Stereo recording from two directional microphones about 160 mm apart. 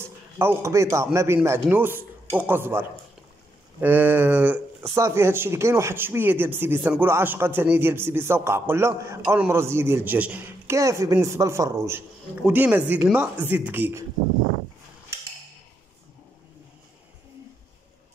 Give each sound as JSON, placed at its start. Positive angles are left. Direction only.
{"t": 0.0, "sound": "a man's voice", "side_deg": -15}